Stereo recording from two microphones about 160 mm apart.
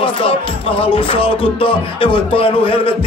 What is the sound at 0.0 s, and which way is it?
Music, 35° left (ahead or behind).